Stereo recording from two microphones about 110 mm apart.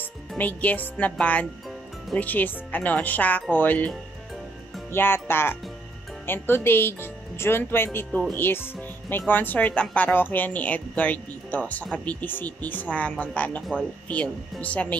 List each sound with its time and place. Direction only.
0.4 s a woman's voice: 15° left (ahead or behind)
4.9 s a woman's voice: 20° left (ahead or behind)